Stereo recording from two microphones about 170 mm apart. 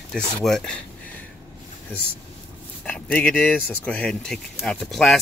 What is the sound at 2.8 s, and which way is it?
Speech, 10° left (ahead or behind).